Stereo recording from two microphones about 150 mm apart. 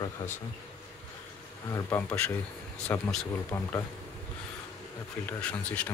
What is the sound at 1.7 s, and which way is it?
Speech, 20° left (ahead or behind).